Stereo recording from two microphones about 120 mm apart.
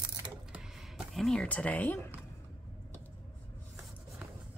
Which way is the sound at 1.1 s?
5° left (ahead or behind).